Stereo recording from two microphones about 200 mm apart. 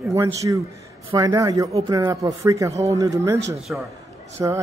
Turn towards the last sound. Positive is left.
turn(degrees=-15)  # may be behind; listen again after turning